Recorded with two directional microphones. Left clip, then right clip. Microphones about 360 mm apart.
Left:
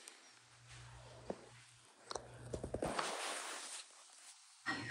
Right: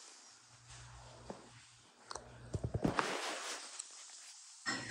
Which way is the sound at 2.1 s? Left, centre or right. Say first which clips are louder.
Left 1 dB; centre.